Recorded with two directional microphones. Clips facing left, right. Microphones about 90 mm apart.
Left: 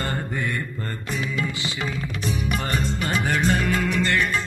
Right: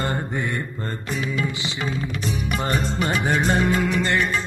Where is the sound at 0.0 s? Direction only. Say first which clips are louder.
Right 2 dB; 20° right (ahead or behind).